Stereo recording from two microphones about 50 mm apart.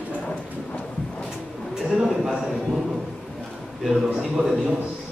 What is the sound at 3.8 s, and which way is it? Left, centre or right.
Speech, centre.